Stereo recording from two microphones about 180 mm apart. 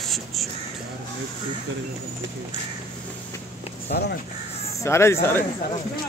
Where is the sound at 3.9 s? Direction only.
55° left (ahead or behind).